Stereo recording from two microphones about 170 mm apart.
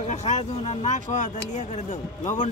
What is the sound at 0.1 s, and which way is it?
Speech, 45° left (ahead or behind).